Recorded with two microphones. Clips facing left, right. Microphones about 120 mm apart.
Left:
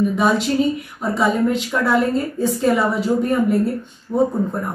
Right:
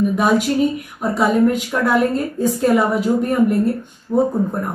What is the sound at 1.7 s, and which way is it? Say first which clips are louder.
A woman's voice: right 1 dB; 5° right (ahead or behind).